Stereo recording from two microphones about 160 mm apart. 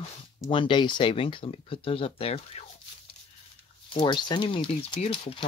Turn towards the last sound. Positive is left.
turn(degrees=35)  # may be behind; listen again after turning